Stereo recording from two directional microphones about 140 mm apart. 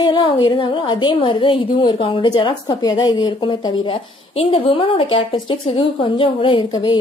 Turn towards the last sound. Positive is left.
turn(degrees=35)  # may be behind; listen again after turning